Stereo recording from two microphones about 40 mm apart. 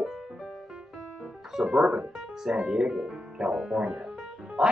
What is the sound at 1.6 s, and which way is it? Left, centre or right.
Speech, centre.